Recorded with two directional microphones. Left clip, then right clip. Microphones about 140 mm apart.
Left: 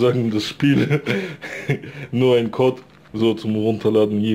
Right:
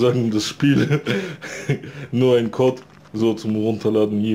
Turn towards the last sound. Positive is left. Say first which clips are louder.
# left 2 dB
turn(degrees=30)  # may be behind; listen again after turning